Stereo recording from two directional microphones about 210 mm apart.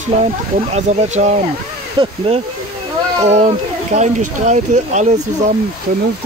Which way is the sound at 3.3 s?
35° right (ahead or behind).